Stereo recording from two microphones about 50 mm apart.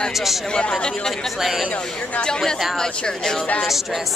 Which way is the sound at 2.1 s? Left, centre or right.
Centre.